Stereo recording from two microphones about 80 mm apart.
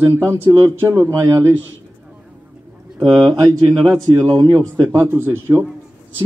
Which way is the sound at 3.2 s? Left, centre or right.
Right.